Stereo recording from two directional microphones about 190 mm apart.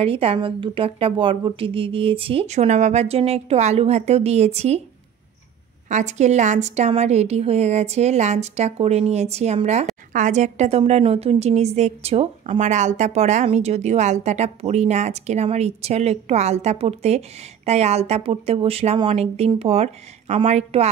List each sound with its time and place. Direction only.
0.0 s a woman's voice: 30° right (ahead or behind)
5.9 s a woman's voice: 40° right (ahead or behind)